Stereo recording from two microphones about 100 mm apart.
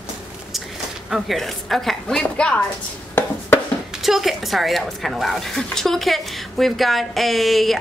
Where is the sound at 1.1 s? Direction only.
Centre (ahead or behind).